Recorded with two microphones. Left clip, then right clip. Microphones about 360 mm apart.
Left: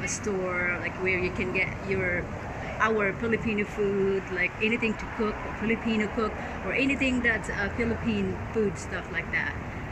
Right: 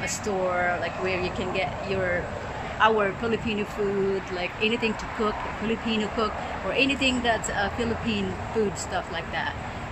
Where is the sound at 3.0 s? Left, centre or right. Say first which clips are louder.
Right 2 dB; right.